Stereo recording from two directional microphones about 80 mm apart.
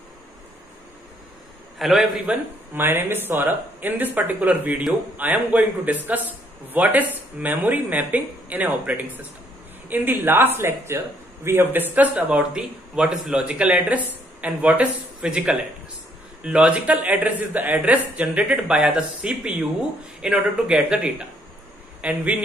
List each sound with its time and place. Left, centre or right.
1.8 s a man's voice: centre
2.2 s a man's voice: right